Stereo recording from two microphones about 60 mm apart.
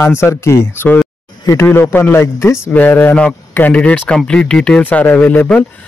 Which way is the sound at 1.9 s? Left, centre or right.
Left.